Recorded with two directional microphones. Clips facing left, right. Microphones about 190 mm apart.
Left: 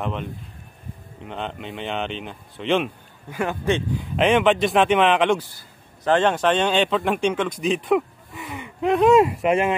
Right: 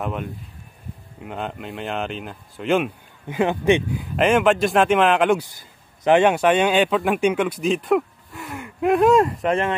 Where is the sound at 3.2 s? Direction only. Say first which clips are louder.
Right 5 dB; 20° right (ahead or behind).